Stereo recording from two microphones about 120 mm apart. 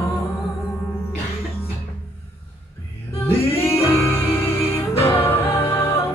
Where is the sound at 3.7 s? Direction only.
20° left (ahead or behind).